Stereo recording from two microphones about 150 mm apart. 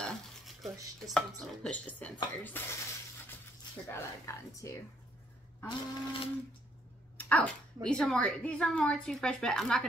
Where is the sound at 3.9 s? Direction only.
20° left (ahead or behind).